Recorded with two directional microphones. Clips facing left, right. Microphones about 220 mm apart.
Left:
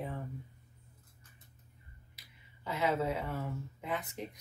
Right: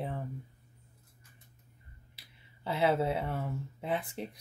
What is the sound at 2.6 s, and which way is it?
Speech, 30° right (ahead or behind).